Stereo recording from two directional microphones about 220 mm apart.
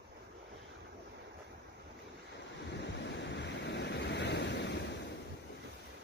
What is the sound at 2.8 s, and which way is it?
Waves, 55° left (ahead or behind).